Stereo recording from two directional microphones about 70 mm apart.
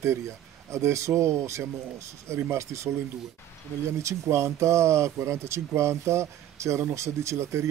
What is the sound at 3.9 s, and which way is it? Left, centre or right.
Speech, right.